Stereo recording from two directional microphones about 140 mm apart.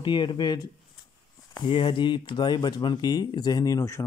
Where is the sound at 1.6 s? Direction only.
35° left (ahead or behind).